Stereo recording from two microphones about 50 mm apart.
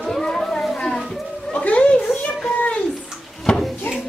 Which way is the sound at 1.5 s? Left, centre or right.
Left.